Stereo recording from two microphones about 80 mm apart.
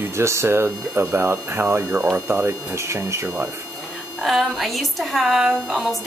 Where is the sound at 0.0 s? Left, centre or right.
Right.